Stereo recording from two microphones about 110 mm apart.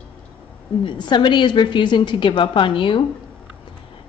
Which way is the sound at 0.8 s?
45° left (ahead or behind).